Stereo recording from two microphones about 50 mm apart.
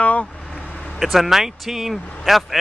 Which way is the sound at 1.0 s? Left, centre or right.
Centre.